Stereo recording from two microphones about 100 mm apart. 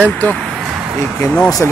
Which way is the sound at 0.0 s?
15° left (ahead or behind).